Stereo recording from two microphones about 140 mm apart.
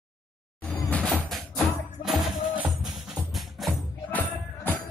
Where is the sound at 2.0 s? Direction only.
5° right (ahead or behind).